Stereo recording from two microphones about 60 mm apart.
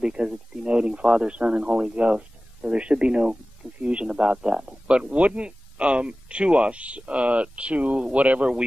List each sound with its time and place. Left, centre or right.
0.0 s speech: centre